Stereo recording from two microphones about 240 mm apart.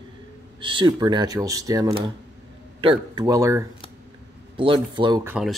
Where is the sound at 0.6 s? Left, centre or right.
Centre.